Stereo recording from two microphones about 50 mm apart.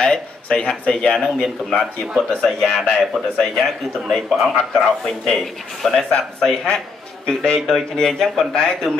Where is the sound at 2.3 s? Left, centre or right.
Centre.